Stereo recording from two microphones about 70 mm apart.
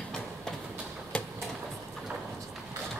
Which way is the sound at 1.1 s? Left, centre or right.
Centre.